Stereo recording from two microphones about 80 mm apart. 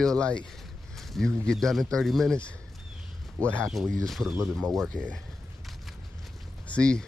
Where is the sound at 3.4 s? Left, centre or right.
Centre.